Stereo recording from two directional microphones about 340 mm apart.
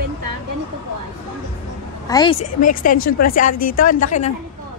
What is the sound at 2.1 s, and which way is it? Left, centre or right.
A woman's voice, centre.